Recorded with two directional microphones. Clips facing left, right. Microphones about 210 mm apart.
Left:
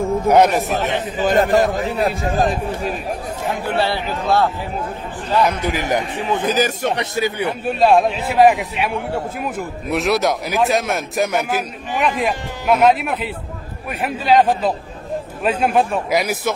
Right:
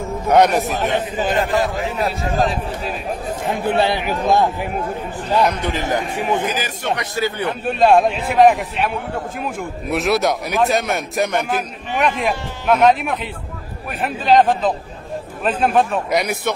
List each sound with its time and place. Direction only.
0.4 s a man's voice: centre (ahead or behind)
1.2 s a man's voice: 40° left (ahead or behind)
3.6 s a man's voice: 15° right (ahead or behind)
5.4 s a man's voice: 10° left (ahead or behind)
6.4 s a man's voice: 40° left (ahead or behind)
7.0 s a man's voice: 20° left (ahead or behind); by 16.5 s centre (ahead or behind)